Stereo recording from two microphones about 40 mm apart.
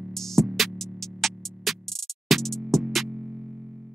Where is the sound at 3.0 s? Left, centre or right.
Centre.